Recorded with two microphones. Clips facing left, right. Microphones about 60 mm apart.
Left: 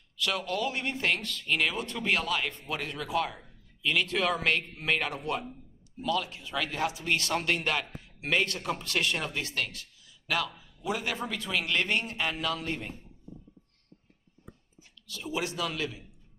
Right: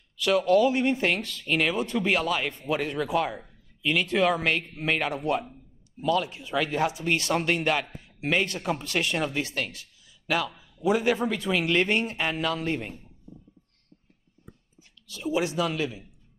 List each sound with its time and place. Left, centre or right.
0.2 s a man's voice: centre; by 12.8 s right
15.0 s a man's voice: centre